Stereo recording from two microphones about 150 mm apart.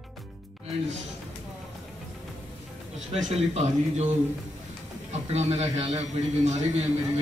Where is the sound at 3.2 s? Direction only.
50° right (ahead or behind).